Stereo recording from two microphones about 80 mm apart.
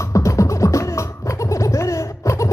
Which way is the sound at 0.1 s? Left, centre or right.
Left.